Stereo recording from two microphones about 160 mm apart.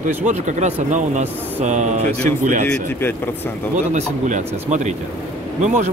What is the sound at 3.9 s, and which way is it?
Speech, 50° right (ahead or behind).